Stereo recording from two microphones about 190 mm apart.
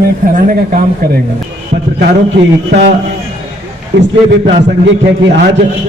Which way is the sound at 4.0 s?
65° right (ahead or behind).